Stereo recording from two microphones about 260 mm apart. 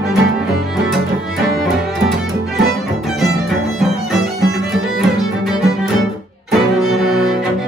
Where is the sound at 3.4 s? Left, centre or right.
Centre.